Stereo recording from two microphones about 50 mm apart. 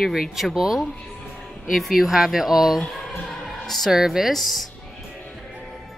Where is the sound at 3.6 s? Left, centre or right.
Centre.